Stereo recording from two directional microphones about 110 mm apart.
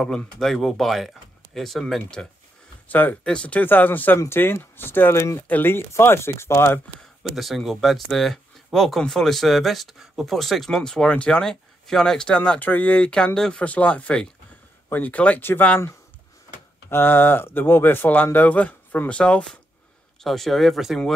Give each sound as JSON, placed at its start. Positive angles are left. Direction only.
{"t": 0.0, "sound": "speech", "side_deg": 5}
{"t": 2.9, "sound": "speech", "side_deg": 15}
{"t": 7.3, "sound": "speech", "side_deg": 0}
{"t": 16.9, "sound": "speech", "side_deg": 20}